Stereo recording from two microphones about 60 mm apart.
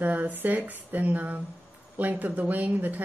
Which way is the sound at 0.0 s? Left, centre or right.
Right.